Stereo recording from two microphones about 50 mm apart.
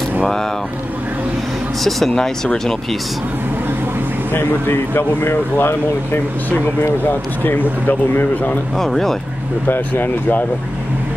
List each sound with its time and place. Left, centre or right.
1.9 s speech: centre
2.1 s speech: centre
4.3 s speech: left
8.1 s speech: left
8.7 s speech: centre
9.7 s speech: left